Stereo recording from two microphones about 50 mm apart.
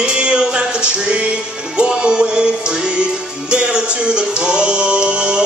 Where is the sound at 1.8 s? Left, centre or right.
Right.